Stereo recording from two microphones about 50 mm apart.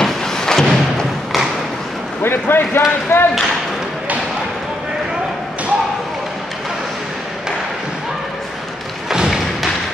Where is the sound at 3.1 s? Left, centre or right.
Left.